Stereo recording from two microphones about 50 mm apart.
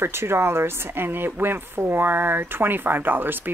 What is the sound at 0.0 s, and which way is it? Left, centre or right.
Speech, right.